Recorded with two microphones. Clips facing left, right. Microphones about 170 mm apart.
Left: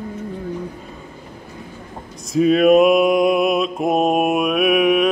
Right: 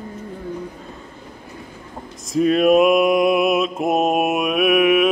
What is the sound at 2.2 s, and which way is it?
Mantra, centre (ahead or behind).